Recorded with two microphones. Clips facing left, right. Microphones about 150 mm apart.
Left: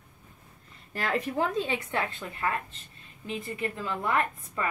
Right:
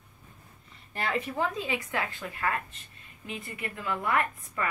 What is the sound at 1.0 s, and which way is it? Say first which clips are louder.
A woman's voice: left 2 dB; 40° left (ahead or behind).